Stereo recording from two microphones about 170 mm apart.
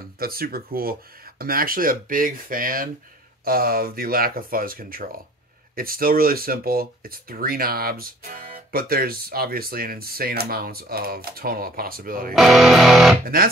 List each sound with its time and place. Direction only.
0.2 s speech: 60° right (ahead or behind)
12.4 s music: centre (ahead or behind)
13.2 s speech: 60° right (ahead or behind)